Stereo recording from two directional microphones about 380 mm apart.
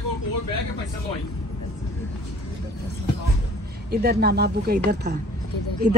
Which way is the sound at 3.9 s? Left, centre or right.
Right.